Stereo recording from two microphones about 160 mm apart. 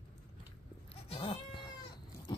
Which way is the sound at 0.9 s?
35° left (ahead or behind).